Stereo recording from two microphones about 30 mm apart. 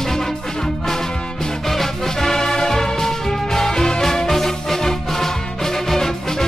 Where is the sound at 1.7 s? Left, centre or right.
Centre.